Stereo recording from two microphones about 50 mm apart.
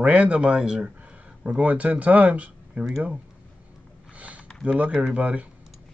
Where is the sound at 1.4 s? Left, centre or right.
Right.